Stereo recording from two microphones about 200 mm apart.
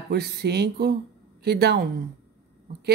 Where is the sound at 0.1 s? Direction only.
55° right (ahead or behind).